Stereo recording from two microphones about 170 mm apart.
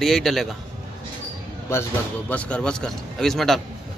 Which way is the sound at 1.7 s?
15° left (ahead or behind).